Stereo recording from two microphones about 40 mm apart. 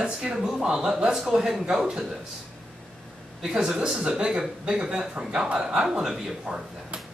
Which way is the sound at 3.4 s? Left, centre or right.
Centre.